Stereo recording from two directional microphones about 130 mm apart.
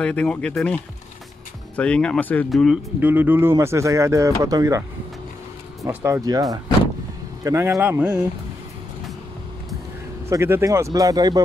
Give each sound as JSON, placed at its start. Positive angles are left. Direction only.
{"t": 0.0, "sound": "speech", "side_deg": 10}
{"t": 1.8, "sound": "speech", "side_deg": 10}
{"t": 2.5, "sound": "speech", "side_deg": 0}
{"t": 3.0, "sound": "speech", "side_deg": -15}
{"t": 5.9, "sound": "speech", "side_deg": -15}
{"t": 7.4, "sound": "speech", "side_deg": -20}
{"t": 10.2, "sound": "speech", "side_deg": -20}